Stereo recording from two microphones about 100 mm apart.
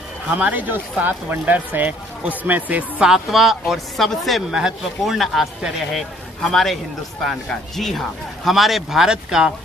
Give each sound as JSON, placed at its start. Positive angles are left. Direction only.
{"t": 0.3, "sound": "speech", "side_deg": -15}
{"t": 3.1, "sound": "speech", "side_deg": 0}